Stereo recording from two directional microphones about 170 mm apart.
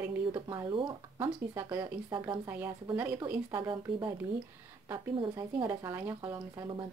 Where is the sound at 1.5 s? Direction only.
15° right (ahead or behind).